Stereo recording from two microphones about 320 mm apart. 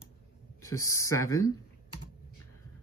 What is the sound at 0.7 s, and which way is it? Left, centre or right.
Speech, centre.